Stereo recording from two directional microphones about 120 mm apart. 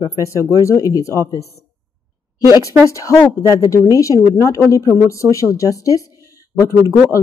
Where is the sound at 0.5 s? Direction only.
25° left (ahead or behind).